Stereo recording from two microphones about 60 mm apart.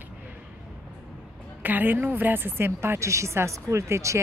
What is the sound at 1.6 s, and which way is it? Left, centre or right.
A woman's voice, right.